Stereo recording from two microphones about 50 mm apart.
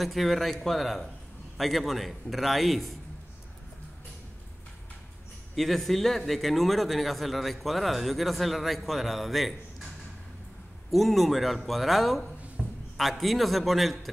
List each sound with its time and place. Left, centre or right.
0.0 s speech: centre
5.6 s speech: centre
10.9 s speech: centre
12.6 s a sound: centre
12.9 s speech: centre